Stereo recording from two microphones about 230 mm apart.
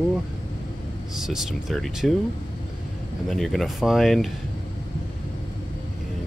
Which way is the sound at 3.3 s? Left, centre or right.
Centre.